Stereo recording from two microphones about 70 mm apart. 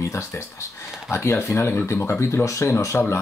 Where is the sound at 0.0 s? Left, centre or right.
Left.